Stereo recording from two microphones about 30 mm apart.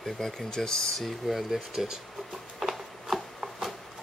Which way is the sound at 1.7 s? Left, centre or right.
Centre.